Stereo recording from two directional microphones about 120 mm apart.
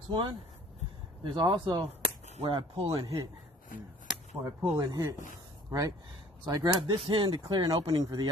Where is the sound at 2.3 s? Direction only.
55° right (ahead or behind).